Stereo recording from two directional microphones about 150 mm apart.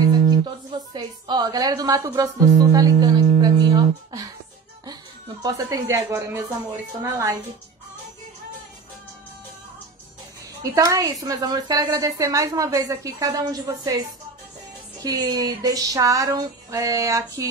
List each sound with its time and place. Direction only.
0.7 s speech: 30° right (ahead or behind)
5.4 s speech: 25° right (ahead or behind)
10.6 s speech: 20° right (ahead or behind)